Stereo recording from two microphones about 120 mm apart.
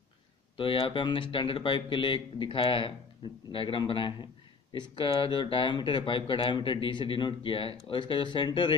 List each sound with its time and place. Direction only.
0.6 s speech: 45° left (ahead or behind)